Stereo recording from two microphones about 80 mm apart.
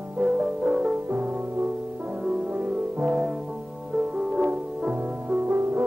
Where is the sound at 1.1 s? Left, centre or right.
Centre.